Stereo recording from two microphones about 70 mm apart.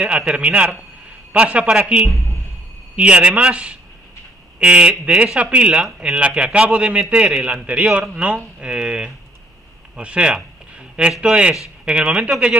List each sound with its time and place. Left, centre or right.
0.0 s a man's voice: centre